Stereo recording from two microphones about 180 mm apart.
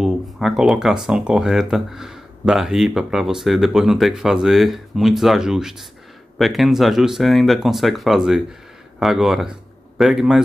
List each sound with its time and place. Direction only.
0.0 s speech: centre (ahead or behind)